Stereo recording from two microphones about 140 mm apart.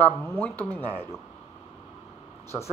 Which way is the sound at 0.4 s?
15° left (ahead or behind).